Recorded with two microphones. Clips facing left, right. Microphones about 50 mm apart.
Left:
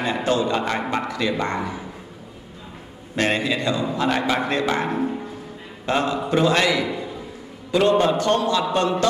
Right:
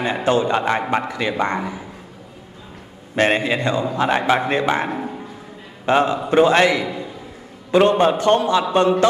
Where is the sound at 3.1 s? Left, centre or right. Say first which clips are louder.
Right 4 dB; right.